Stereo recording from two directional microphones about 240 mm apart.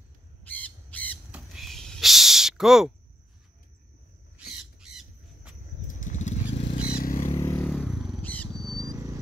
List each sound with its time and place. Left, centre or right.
0.5 s crow: centre
1.3 s a sound: centre
4.7 s squawk: centre
5.9 s motorcycle: left
6.8 s vehicle: left
7.3 s motorcycle: centre
8.6 s a sound: centre